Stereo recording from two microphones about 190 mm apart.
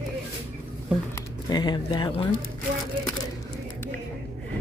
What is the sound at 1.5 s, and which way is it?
Speech, 20° left (ahead or behind).